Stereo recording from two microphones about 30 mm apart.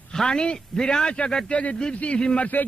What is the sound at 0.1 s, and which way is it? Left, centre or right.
A man's voice, left.